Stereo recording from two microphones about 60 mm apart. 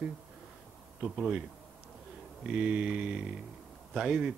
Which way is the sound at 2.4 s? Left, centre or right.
Centre.